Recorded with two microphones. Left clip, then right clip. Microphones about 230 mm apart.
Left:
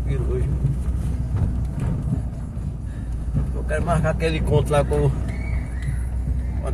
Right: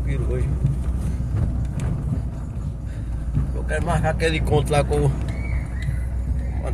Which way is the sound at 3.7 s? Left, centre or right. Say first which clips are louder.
Left 1 dB; right.